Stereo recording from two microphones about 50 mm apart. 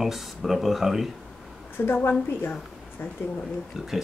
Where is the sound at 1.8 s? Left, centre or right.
Left.